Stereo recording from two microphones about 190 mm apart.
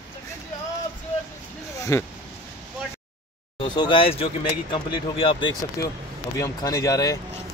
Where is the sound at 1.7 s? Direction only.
15° left (ahead or behind).